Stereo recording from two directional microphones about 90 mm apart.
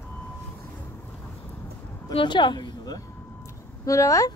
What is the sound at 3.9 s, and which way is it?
Speech, 35° left (ahead or behind).